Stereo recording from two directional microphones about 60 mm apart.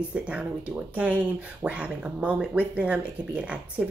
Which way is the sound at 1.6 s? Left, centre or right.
Right.